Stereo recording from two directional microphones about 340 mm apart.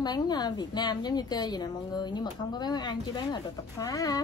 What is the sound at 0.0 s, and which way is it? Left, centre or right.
A woman's voice, centre.